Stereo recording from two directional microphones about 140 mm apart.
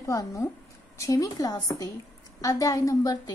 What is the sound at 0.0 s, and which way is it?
A woman's voice, 25° left (ahead or behind).